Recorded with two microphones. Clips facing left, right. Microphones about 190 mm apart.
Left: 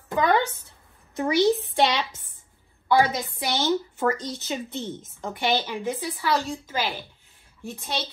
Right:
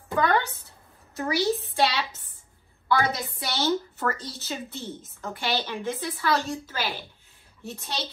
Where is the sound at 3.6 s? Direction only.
15° left (ahead or behind).